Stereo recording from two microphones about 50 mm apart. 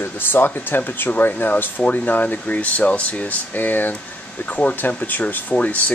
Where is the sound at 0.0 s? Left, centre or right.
Left.